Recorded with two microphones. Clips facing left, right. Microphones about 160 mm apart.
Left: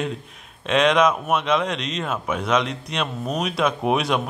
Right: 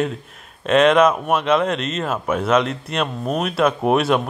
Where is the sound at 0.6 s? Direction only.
5° right (ahead or behind).